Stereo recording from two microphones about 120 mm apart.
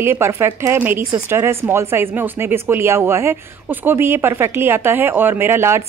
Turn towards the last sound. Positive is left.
turn(degrees=-20)  # may be behind; listen again after turning